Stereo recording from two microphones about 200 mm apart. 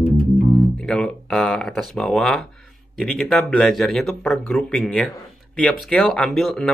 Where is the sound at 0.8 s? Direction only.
5° left (ahead or behind).